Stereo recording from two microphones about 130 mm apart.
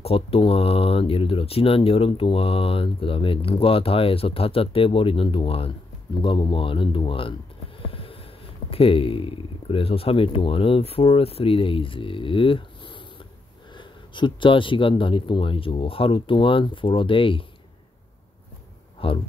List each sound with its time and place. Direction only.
0.0 s speech: 50° left (ahead or behind)
7.8 s a sound: 45° left (ahead or behind)
8.6 s speech: 45° left (ahead or behind)
19.0 s speech: 45° left (ahead or behind)